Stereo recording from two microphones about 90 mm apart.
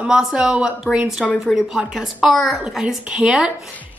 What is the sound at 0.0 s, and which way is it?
A woman's voice, 5° right (ahead or behind).